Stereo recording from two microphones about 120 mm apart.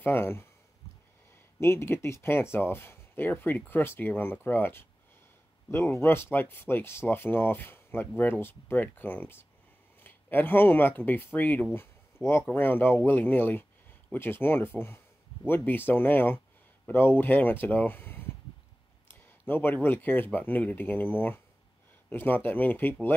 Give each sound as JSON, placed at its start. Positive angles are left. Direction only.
{"t": 0.0, "sound": "speech", "side_deg": 20}
{"t": 1.6, "sound": "speech", "side_deg": 20}
{"t": 19.4, "sound": "speech", "side_deg": 15}